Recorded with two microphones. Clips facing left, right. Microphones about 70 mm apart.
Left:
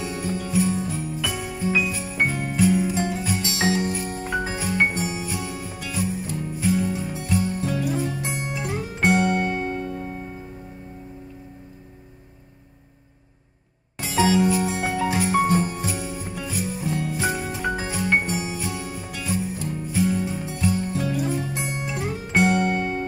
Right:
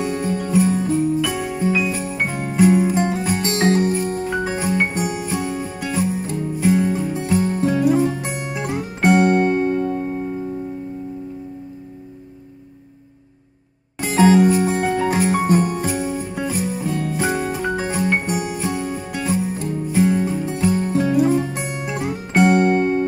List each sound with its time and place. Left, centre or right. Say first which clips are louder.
0.0 s jingle bell: right 6 dB; right
1.9 s jingle bell: right 6 dB; right
2.3 s music: right 8 dB; right
14.0 s music: right 6 dB; right
15.6 s jingle bell: right 6 dB; right
15.9 s music: right 7 dB; right
16.7 s jingle bell: right 4 dB; right
17.7 s music: right 1 dB; right